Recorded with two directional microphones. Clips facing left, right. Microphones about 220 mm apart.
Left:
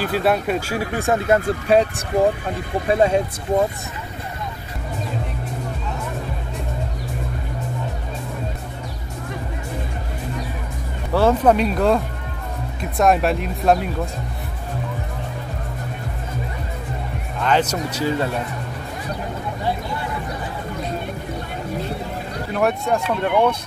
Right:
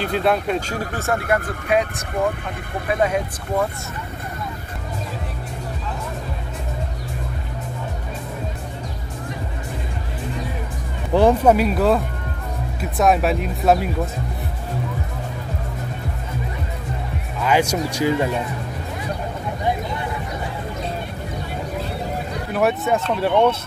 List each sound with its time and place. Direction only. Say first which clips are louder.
0.1 s speech: even; 5° left (ahead or behind); by 3.6 s 30° left (ahead or behind)
11.1 s speech: right 1 dB; 10° right (ahead or behind)
17.4 s speech: right 1 dB; 10° right (ahead or behind)
22.5 s speech: right 1 dB; 5° right (ahead or behind)